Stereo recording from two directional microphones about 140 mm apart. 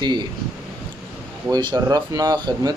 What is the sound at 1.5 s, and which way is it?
Speech, 30° right (ahead or behind).